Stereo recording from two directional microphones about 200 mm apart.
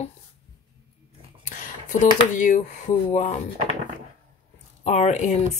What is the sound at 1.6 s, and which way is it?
Speech, 40° left (ahead or behind).